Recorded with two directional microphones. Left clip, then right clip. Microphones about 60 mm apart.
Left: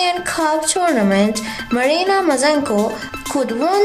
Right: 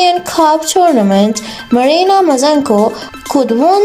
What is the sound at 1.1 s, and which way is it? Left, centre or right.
A child's voice, right.